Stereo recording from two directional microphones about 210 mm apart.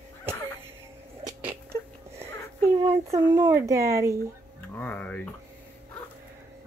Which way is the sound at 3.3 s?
15° right (ahead or behind).